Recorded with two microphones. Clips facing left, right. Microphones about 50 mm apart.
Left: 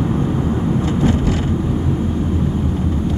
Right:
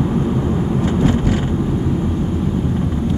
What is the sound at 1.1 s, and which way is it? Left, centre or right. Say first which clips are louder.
Vehicle: right 1 dB; right.